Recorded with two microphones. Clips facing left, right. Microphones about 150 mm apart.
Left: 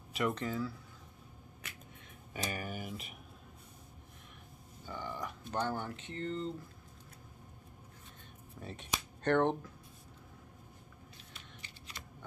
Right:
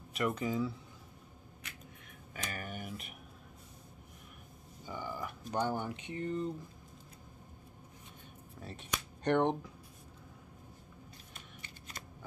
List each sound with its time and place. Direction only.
0.1 s a sound: centre (ahead or behind)
0.4 s speech: 15° right (ahead or behind)
2.5 s speech: 5° left (ahead or behind)
4.8 s speech: 10° right (ahead or behind)
8.5 s speech: centre (ahead or behind)
9.2 s speech: 15° right (ahead or behind)
11.3 s shuffling cards: 45° right (ahead or behind)